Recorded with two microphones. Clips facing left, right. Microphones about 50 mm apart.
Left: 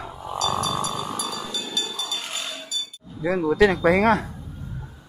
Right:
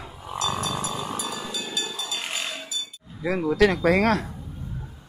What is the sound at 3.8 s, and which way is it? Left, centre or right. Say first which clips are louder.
Speech: left 2 dB; centre.